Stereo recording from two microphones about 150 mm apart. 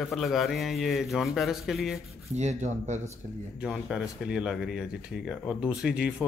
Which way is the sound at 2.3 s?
50° right (ahead or behind).